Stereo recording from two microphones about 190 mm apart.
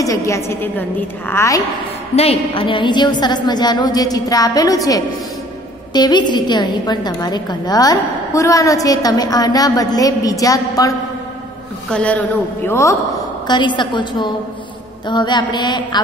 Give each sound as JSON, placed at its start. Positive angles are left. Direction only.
{"t": 0.0, "sound": "a woman's voice", "side_deg": 15}
{"t": 2.1, "sound": "a woman's voice", "side_deg": 30}
{"t": 11.9, "sound": "a woman's voice", "side_deg": 5}